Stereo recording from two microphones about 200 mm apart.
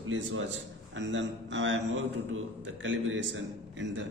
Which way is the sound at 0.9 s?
65° right (ahead or behind).